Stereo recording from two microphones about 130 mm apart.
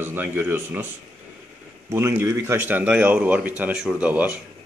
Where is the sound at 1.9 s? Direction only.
20° right (ahead or behind).